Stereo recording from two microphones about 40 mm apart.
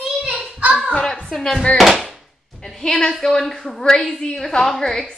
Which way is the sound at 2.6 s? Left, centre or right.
Centre.